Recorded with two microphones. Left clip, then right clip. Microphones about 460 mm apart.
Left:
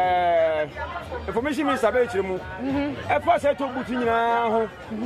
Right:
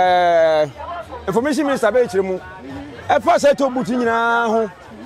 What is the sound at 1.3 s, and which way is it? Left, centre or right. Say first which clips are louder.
Speech: right 6 dB; right.